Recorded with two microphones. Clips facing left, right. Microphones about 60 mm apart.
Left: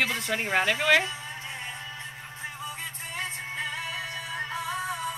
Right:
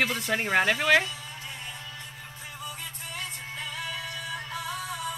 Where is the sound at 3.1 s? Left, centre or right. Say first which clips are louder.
Left 4 dB; left.